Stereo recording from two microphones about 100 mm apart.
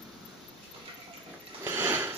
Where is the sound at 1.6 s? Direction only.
25° right (ahead or behind).